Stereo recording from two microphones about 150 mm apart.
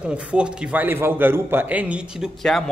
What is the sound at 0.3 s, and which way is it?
A man's voice, 10° right (ahead or behind).